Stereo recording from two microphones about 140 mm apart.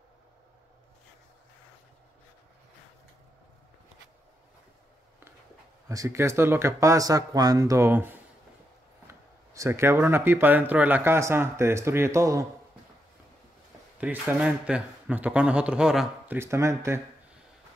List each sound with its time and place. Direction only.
5.9 s speech: 20° right (ahead or behind)
13.9 s speech: 10° right (ahead or behind)
16.3 s speech: 20° right (ahead or behind)